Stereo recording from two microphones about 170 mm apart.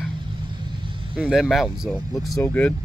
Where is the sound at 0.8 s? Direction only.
30° right (ahead or behind).